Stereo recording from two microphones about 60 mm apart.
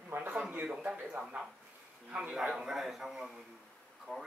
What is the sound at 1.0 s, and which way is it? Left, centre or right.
A man's voice, centre.